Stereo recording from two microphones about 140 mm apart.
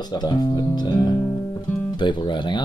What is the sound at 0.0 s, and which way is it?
Speech, 30° left (ahead or behind).